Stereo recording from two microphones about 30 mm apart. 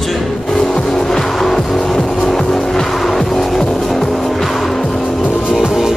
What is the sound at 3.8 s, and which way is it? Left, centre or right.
Music, centre.